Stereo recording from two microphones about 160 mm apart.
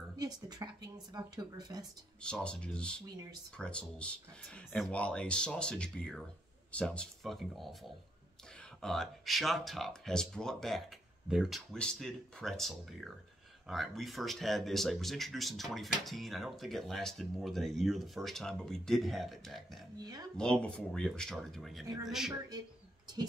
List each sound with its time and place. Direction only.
0.2 s speech: 25° right (ahead or behind)
2.2 s speech: 5° left (ahead or behind)
20.0 s speech: 25° right (ahead or behind)
20.6 s speech: 5° left (ahead or behind)